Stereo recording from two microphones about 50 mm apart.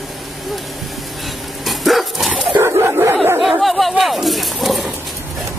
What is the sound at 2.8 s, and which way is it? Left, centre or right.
Dog, right.